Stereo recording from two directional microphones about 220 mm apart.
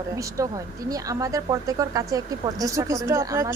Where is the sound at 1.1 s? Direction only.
15° right (ahead or behind).